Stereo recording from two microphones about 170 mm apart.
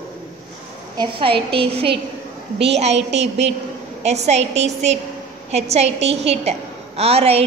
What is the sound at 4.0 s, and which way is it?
A woman's voice, 40° right (ahead or behind).